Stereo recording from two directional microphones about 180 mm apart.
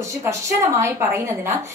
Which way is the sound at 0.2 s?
15° right (ahead or behind).